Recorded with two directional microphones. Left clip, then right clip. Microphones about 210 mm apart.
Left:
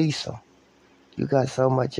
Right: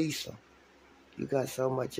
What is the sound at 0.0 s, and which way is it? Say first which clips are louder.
Speech: left 7 dB; 20° left (ahead or behind).